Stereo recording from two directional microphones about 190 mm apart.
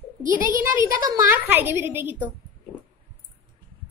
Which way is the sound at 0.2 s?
45° right (ahead or behind).